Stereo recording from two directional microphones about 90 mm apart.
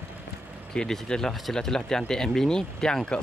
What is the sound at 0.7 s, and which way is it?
Speech, 10° left (ahead or behind).